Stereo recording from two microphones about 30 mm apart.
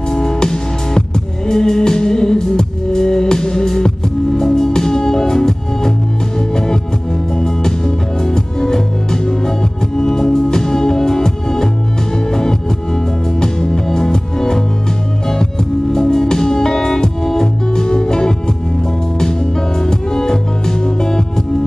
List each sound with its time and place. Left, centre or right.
0.1 s music: left
15.9 s music: left
19.8 s music: left